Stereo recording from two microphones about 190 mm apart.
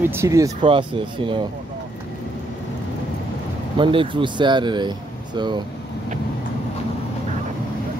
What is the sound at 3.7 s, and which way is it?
Speech, 25° right (ahead or behind).